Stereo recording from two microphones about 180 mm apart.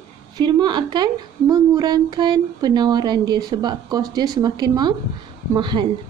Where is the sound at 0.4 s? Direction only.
25° right (ahead or behind).